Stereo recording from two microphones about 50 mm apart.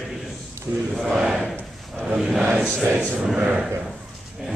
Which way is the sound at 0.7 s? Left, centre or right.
Centre.